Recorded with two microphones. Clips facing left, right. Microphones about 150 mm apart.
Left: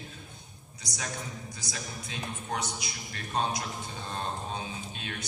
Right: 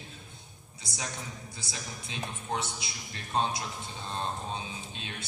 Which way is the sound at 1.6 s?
25° right (ahead or behind).